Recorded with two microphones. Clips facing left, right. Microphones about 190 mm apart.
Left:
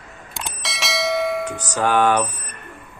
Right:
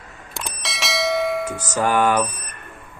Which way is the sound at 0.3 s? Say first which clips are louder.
Even; centre (ahead or behind).